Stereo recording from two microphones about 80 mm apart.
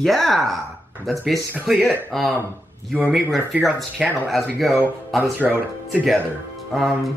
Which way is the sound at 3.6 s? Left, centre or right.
Centre.